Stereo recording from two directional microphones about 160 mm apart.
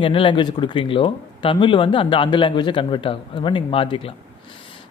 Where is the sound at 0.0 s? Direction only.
35° left (ahead or behind).